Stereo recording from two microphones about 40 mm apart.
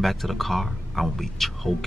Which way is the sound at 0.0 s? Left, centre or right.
Centre.